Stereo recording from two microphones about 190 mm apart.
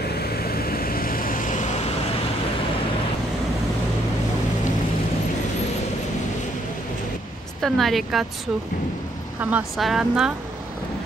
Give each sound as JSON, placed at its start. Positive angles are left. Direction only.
{"t": 0.0, "sound": "vehicle", "side_deg": 55}
{"t": 7.6, "sound": "speech", "side_deg": 0}
{"t": 9.4, "sound": "speech", "side_deg": -5}